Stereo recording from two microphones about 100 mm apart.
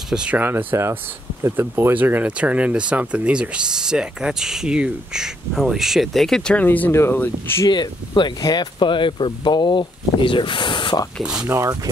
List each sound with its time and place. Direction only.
0.1 s speech: 10° right (ahead or behind); by 7.6 s 20° left (ahead or behind)
7.6 s speech: 45° left (ahead or behind)
11.4 s speech: 25° right (ahead or behind)